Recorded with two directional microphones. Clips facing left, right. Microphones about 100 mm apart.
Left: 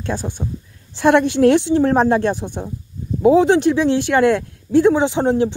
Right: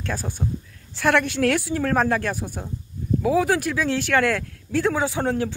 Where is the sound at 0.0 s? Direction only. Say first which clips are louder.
Left 4 dB; 20° left (ahead or behind).